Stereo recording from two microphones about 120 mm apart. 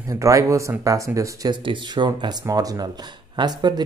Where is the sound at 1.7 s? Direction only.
40° right (ahead or behind).